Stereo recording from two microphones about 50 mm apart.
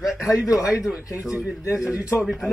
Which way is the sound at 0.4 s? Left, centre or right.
Left.